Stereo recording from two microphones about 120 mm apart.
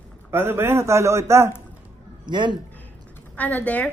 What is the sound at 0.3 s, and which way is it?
A man's voice, 20° right (ahead or behind).